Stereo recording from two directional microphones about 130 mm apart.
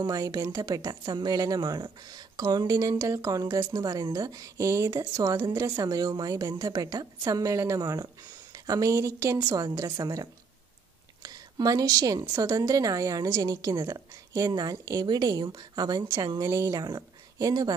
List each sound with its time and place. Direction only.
0.0 s a woman's voice: 30° right (ahead or behind)
11.2 s a woman's voice: 30° right (ahead or behind)